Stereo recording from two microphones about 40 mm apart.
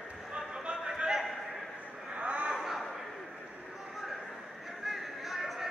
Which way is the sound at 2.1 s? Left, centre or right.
Right.